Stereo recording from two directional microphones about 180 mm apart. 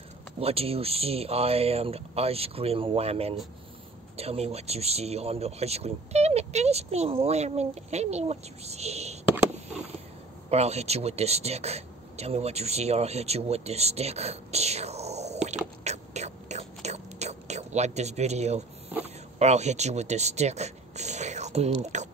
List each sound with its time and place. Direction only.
0.4 s speech: 35° right (ahead or behind)
10.5 s speech: 35° right (ahead or behind)
15.8 s whispering: 40° right (ahead or behind)
18.9 s a sound: 10° right (ahead or behind)
19.3 s speech: 40° right (ahead or behind)